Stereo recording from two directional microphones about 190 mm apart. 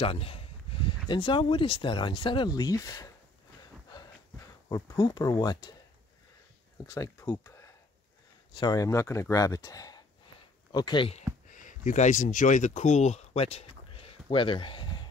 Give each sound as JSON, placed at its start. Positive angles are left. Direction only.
{"t": 0.0, "sound": "speech", "side_deg": 30}
{"t": 4.6, "sound": "speech", "side_deg": 20}
{"t": 6.9, "sound": "speech", "side_deg": 15}
{"t": 11.5, "sound": "speech", "side_deg": 40}